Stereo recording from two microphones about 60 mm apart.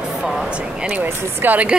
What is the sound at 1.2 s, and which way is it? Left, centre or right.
Speech, right.